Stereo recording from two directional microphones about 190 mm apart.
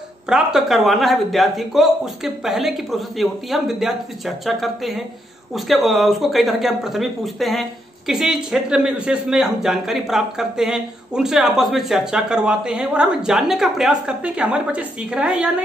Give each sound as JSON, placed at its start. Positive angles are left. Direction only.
{"t": 0.3, "sound": "speech", "side_deg": 0}